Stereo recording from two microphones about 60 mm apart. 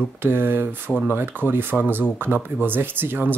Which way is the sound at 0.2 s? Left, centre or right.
Right.